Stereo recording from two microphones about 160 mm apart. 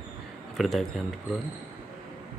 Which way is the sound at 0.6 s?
Centre (ahead or behind).